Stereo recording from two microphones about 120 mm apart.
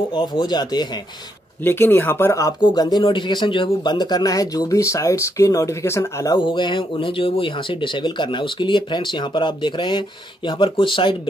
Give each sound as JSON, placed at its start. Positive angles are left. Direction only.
{"t": 0.1, "sound": "speech", "side_deg": 40}
{"t": 1.6, "sound": "speech", "side_deg": 20}
{"t": 2.6, "sound": "speech", "side_deg": 35}
{"t": 6.4, "sound": "speech", "side_deg": 40}